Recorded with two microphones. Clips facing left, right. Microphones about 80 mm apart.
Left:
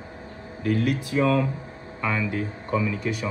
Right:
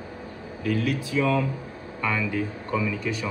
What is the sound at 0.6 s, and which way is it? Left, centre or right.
Speech, left.